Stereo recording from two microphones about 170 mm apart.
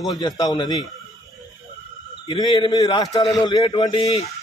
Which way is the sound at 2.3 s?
25° left (ahead or behind).